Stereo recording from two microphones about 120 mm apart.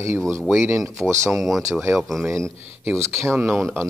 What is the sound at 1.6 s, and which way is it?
Speech, 25° right (ahead or behind).